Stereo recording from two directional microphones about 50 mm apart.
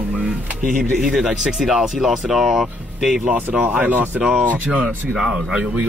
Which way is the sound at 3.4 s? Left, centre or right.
Right.